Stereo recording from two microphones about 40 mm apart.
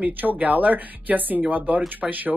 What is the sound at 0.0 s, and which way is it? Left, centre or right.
Speech, right.